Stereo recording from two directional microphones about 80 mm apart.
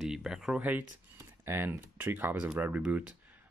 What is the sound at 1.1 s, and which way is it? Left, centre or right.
Speech, right.